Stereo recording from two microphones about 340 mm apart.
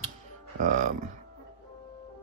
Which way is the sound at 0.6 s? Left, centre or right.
Right.